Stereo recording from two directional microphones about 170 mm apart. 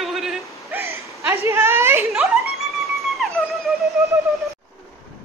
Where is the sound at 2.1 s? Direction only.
Centre (ahead or behind).